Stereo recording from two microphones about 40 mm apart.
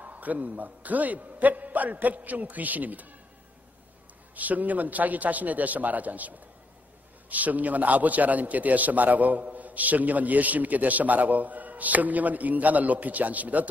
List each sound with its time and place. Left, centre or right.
0.0 s a man's voice: right
4.4 s a man's voice: right